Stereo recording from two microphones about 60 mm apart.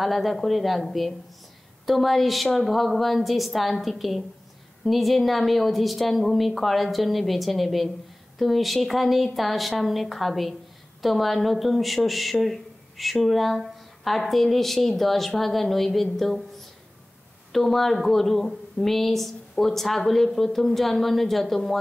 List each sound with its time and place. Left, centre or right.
0.0 s speech: centre